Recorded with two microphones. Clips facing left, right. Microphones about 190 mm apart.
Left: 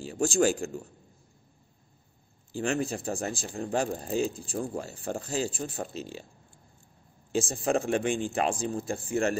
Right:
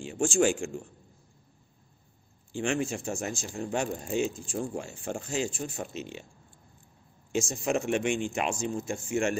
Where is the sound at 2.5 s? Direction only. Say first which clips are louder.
Even; 35° left (ahead or behind).